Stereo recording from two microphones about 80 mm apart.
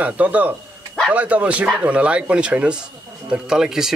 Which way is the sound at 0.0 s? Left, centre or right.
Centre.